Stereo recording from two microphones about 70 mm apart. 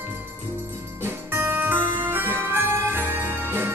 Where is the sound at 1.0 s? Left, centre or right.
Right.